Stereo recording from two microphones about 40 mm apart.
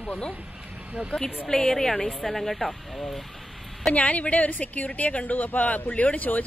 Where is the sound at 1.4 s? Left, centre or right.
Centre.